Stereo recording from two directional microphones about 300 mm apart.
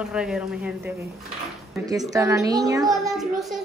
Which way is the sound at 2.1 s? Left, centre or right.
Centre.